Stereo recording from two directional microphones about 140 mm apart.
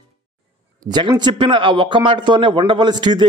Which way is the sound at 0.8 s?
30° right (ahead or behind).